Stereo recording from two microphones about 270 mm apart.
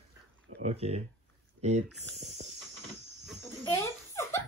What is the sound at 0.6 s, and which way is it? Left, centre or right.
Speech, right.